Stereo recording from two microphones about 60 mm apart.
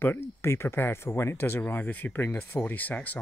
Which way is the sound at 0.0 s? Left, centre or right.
Left.